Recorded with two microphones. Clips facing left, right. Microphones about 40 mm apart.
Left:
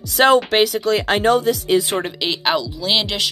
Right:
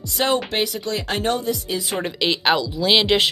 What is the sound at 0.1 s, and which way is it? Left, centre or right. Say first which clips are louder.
Speech: left 7 dB; left.